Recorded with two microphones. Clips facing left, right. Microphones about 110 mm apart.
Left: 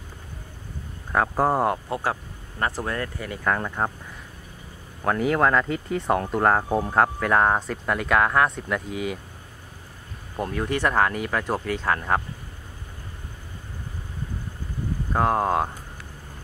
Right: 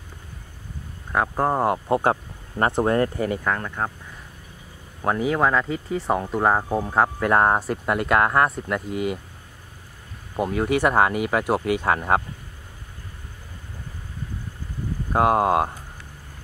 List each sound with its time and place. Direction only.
1.1 s speech: centre (ahead or behind)
2.8 s speech: 35° right (ahead or behind)
3.4 s speech: 5° left (ahead or behind)
5.0 s speech: 10° right (ahead or behind)
7.2 s speech: 10° right (ahead or behind)
10.3 s speech: 10° right (ahead or behind)
15.1 s speech: 10° right (ahead or behind)